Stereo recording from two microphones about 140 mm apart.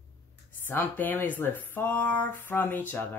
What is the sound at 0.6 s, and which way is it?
Speech, 15° left (ahead or behind).